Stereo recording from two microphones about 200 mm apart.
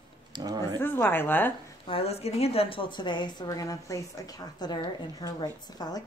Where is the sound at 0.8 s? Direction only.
10° left (ahead or behind).